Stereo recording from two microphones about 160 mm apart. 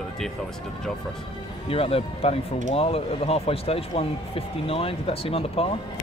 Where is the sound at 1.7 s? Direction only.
35° left (ahead or behind).